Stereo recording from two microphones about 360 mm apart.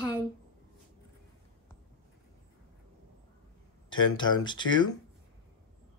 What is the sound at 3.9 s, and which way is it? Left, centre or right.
Speech, centre.